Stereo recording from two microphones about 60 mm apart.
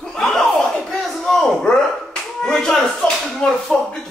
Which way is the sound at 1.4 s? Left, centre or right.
Centre.